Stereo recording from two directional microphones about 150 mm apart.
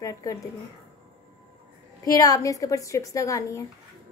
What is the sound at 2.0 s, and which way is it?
A woman's voice, 25° left (ahead or behind).